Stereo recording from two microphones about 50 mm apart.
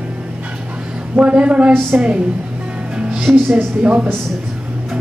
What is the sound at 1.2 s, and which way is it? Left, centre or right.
Speech, right.